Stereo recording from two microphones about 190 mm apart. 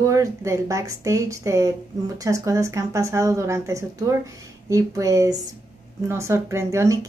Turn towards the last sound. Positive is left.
turn(degrees=-15)  # may be behind; listen again after turning